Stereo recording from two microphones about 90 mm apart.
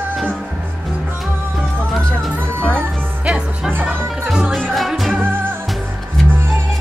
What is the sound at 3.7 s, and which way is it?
Music, 25° right (ahead or behind).